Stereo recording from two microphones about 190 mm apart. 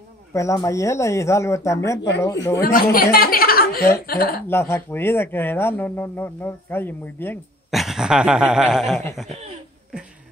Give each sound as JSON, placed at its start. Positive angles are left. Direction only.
{"t": 0.3, "sound": "speech", "side_deg": 15}
{"t": 2.0, "sound": "speech", "side_deg": 65}
{"t": 2.6, "sound": "a woman's voice", "side_deg": 50}
{"t": 4.5, "sound": "speech", "side_deg": 10}
{"t": 7.7, "sound": "a sound", "side_deg": 0}